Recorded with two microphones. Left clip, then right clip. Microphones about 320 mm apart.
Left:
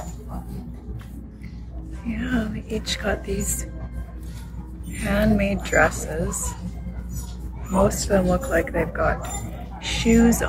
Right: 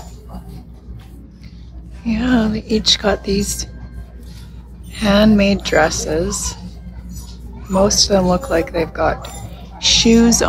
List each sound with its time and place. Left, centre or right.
2.0 s a woman's voice: centre
5.0 s a woman's voice: centre
7.9 s a woman's voice: centre
9.8 s a sound: centre